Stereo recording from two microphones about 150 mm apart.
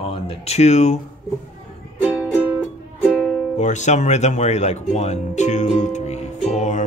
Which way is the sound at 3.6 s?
55° left (ahead or behind).